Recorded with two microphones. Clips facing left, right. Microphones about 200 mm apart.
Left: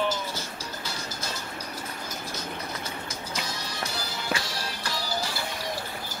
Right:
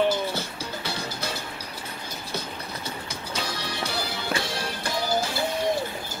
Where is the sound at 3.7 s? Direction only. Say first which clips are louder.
Right 4 dB; 65° right (ahead or behind).